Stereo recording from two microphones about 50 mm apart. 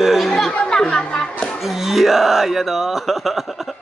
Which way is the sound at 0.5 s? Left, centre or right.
Centre.